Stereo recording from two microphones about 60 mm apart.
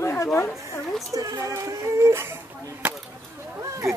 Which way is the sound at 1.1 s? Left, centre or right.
Right.